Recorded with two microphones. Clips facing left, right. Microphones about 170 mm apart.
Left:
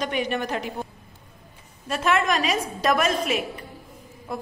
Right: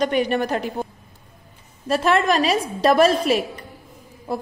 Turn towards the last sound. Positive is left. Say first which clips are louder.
# right 5 dB
turn(degrees=-30)  # may be behind; listen again after turning